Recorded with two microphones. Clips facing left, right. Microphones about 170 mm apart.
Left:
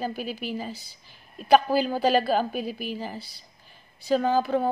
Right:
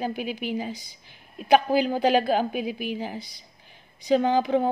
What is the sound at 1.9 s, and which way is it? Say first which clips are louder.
A man's voice: even; 15° right (ahead or behind).